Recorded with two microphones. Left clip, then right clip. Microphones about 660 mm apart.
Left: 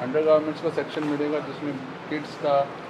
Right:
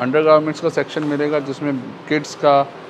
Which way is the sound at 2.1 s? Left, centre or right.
Right.